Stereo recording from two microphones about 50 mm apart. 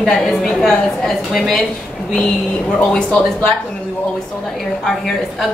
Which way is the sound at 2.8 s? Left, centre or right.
Centre.